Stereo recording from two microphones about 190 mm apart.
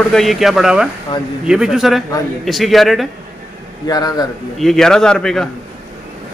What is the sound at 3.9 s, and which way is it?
Speech, 20° left (ahead or behind).